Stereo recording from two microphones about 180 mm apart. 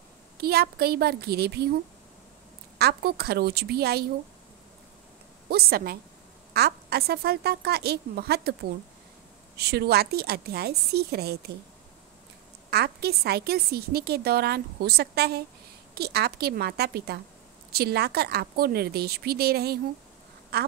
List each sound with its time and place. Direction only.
0.4 s a woman's voice: 60° right (ahead or behind)
2.8 s a woman's voice: 60° right (ahead or behind)
5.5 s a woman's voice: 60° right (ahead or behind)
9.6 s a woman's voice: 65° right (ahead or behind)
12.6 s a woman's voice: 65° right (ahead or behind)
20.5 s duck: 65° right (ahead or behind)